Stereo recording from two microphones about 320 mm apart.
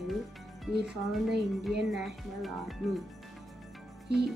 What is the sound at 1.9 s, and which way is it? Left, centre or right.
Speech, centre.